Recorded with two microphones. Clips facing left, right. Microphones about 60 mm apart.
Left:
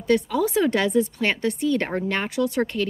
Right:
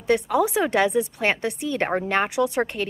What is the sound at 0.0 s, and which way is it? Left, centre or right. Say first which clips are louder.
A woman's voice: right 1 dB; right.